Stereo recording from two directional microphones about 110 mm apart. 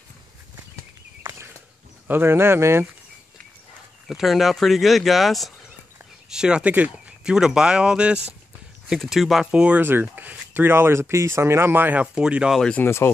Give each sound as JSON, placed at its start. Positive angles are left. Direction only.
{"t": 2.0, "sound": "speech", "side_deg": -20}
{"t": 4.1, "sound": "speech", "side_deg": 0}
{"t": 12.5, "sound": "speech", "side_deg": 5}
{"t": 12.8, "sound": "speech", "side_deg": 20}